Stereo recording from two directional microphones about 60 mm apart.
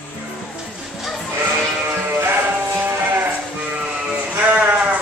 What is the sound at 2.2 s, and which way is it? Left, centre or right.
Sheep, right.